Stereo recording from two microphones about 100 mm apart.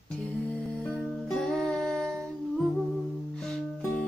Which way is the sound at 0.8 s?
10° left (ahead or behind).